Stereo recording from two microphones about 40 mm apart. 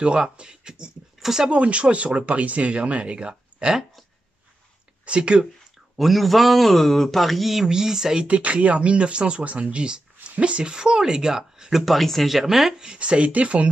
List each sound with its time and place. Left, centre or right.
0.0 s speech: right
1.2 s speech: centre
1.5 s speech: right
5.0 s speech: right
5.9 s a man's voice: centre
7.6 s speech: centre
8.3 s speech: right; by 11.8 s centre
11.8 s a man's voice: centre
13.0 s speech: right